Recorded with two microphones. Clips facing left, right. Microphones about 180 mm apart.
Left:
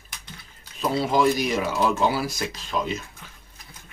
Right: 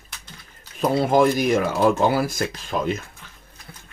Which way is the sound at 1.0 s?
50° right (ahead or behind).